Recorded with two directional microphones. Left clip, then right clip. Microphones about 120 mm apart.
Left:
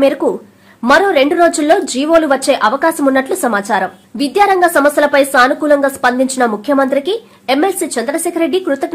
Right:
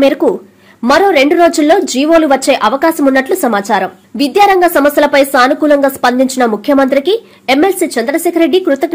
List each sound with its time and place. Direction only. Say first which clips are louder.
0.2 s a woman's voice: right 4 dB; 20° right (ahead or behind)